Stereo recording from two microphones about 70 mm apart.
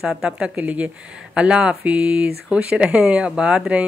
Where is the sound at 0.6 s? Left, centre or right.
Right.